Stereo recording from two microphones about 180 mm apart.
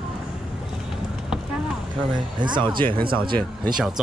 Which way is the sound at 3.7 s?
5° right (ahead or behind).